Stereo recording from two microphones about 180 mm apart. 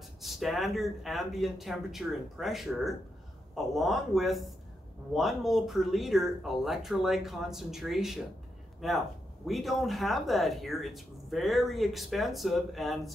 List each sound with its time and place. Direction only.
0.2 s speech: centre (ahead or behind)